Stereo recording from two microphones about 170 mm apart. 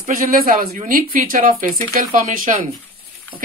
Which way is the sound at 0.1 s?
55° right (ahead or behind).